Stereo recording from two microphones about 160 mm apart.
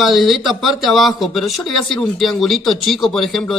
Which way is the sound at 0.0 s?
Centre (ahead or behind).